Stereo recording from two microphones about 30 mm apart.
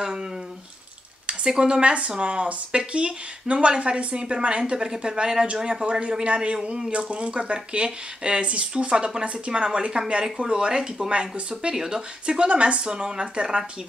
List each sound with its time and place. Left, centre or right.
1.4 s a woman's voice: right
1.8 s a woman's voice: right
5.9 s a woman's voice: right
11.1 s speech: right
11.7 s speech: centre
12.3 s speech: right
12.8 s speech: right